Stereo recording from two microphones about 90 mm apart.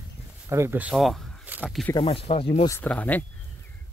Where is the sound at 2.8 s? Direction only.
15° left (ahead or behind).